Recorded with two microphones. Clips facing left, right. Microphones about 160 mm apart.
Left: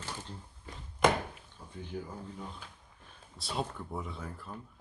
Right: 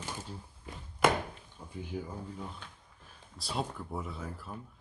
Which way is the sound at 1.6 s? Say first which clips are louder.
Right 3 dB; 15° right (ahead or behind).